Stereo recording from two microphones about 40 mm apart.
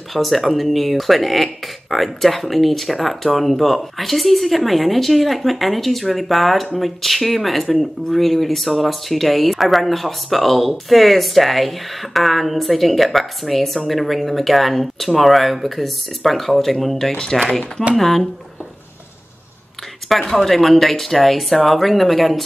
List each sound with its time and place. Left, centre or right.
0.1 s speech: centre
17.2 s speech: centre
17.9 s speech: centre
20.1 s speech: centre